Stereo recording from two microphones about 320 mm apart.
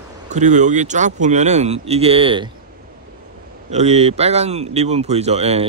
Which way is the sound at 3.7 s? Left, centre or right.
Centre.